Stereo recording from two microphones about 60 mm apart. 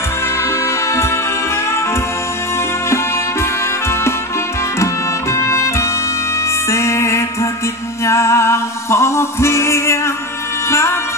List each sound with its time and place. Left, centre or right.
0.4 s music: left
5.3 s music: left